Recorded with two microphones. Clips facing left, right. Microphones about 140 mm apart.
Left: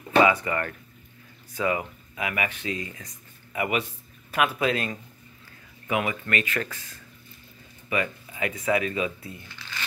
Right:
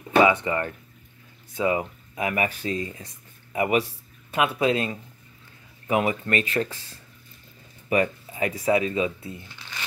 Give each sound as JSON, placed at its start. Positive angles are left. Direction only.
{"t": 0.1, "sound": "speech", "side_deg": -25}